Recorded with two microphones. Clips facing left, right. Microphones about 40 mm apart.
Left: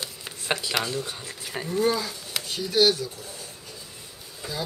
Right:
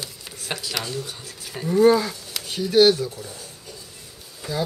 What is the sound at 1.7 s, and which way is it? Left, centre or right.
Speech, centre.